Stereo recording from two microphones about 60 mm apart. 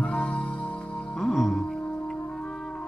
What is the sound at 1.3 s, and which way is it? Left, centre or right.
Music, centre.